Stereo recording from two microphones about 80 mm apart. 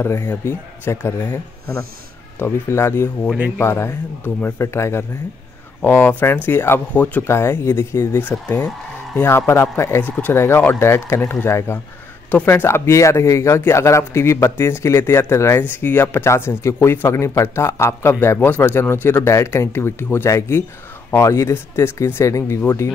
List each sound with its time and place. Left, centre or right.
0.3 s speech: left
7.2 s speech: left
10.0 s speech: left